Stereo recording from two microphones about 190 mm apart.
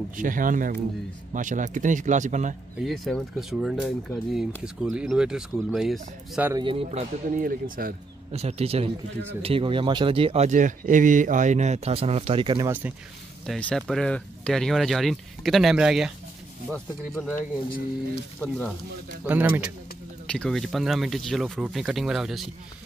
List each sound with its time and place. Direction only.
0.2 s speech: 45° right (ahead or behind)
2.8 s speech: centre (ahead or behind)
6.5 s speech: 25° right (ahead or behind); by 7.9 s 50° right (ahead or behind)
8.3 s speech: 35° right (ahead or behind)
12.6 s speech: 10° right (ahead or behind)
13.5 s speech: 5° left (ahead or behind)
17.4 s speech: 50° left (ahead or behind)
19.2 s speech: 10° right (ahead or behind)
20.2 s speech: 5° left (ahead or behind)